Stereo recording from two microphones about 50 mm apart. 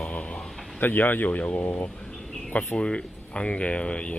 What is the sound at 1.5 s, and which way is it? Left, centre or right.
Speech, left.